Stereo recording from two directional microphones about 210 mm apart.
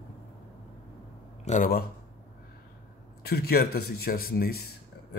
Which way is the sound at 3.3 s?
50° left (ahead or behind).